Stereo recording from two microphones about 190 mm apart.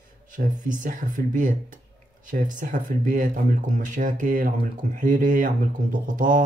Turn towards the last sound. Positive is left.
turn(degrees=-45)  # may be behind; listen again after turning